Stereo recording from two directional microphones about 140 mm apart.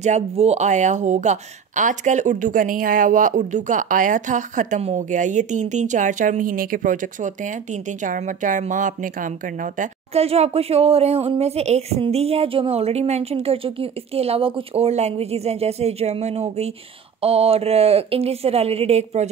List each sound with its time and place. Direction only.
0.0 s speech: 55° right (ahead or behind); by 9.8 s 75° right (ahead or behind)
10.1 s speech: 45° right (ahead or behind)